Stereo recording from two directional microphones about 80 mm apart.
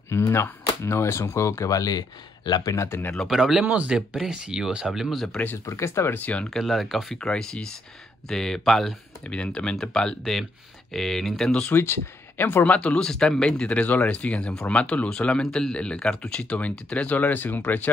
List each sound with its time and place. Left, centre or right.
0.3 s speech: left
3.3 s speech: centre
3.6 s speech: centre
5.7 s speech: left
6.2 s speech: centre
6.5 s speech: centre
11.7 s speech: left
12.7 s speech: centre